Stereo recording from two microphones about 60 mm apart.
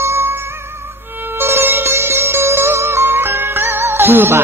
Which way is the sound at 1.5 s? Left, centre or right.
Right.